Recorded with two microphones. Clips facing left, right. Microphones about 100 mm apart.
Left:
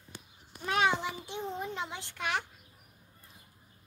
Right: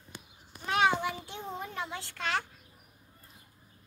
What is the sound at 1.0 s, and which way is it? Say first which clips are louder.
A child's voice: right 1 dB; 20° left (ahead or behind).